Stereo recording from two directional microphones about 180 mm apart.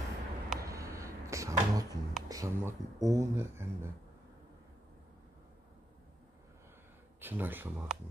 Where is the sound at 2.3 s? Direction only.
20° right (ahead or behind).